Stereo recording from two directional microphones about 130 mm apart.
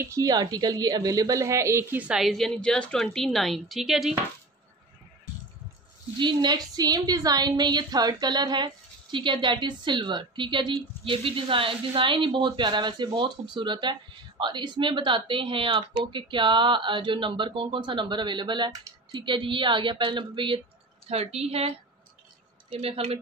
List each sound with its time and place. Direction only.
0.0 s a woman's voice: 25° right (ahead or behind); by 4.1 s centre (ahead or behind)
6.1 s a woman's voice: 35° right (ahead or behind)
21.1 s a woman's voice: 50° right (ahead or behind)